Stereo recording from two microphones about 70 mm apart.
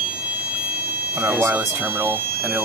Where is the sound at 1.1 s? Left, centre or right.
Centre.